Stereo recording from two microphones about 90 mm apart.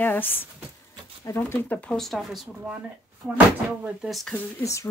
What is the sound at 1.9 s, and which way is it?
Speech, centre (ahead or behind).